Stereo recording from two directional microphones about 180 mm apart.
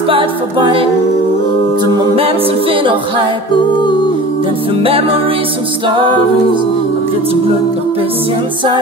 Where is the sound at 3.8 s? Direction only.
25° left (ahead or behind).